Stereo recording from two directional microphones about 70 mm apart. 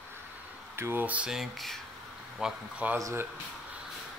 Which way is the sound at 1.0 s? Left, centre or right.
Right.